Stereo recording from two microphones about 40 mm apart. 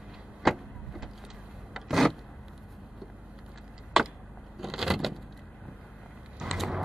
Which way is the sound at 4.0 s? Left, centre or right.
Centre.